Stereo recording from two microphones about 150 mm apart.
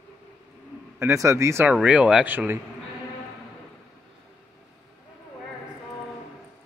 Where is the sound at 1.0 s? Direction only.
20° right (ahead or behind).